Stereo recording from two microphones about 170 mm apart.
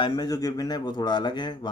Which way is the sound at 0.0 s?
25° left (ahead or behind).